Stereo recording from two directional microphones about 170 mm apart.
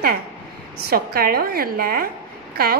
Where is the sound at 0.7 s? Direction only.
65° right (ahead or behind).